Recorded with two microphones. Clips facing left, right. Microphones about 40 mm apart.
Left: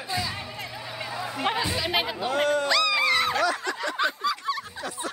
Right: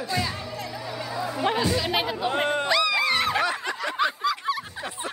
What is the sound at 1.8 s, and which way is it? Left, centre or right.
Speech, centre.